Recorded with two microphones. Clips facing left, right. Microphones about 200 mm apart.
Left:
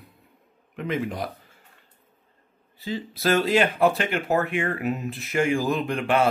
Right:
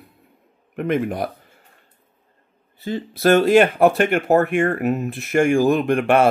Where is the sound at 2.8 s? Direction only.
55° right (ahead or behind).